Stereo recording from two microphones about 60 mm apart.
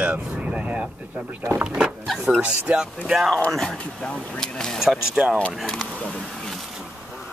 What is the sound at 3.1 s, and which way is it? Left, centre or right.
Speech, centre.